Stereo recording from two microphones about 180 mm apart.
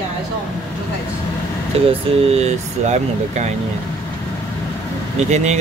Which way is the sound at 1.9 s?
35° right (ahead or behind).